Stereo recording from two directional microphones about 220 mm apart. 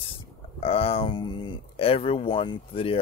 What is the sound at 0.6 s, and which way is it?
Speech, 25° left (ahead or behind).